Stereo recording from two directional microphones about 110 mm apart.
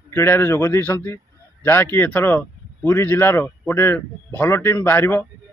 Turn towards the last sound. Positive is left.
turn(degrees=20)  # may be behind; listen again after turning